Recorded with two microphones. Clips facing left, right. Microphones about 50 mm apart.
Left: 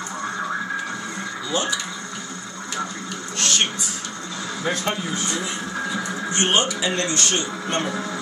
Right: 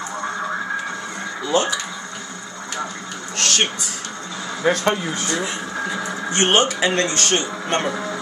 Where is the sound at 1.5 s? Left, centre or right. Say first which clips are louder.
Right 5 dB; right.